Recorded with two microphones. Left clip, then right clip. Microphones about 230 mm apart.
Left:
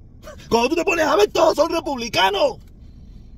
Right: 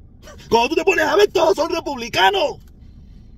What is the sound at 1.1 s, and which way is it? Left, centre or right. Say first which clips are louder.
Speech: left 1 dB; centre.